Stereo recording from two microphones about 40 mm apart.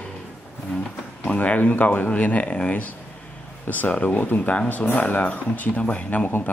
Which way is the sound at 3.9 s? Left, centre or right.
Left.